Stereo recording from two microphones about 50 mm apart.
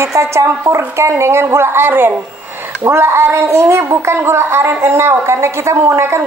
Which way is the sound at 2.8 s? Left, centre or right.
Right.